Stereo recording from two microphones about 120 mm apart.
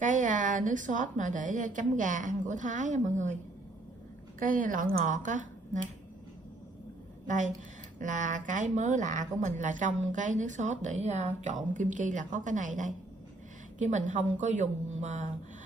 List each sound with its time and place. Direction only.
0.0 s speech: 90° right
4.5 s speech: 90° right
7.2 s speech: 90° right; by 11.5 s 70° right (ahead or behind)
11.7 s speech: 90° right